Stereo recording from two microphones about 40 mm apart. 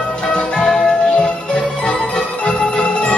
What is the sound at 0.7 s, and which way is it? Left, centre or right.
Music, centre.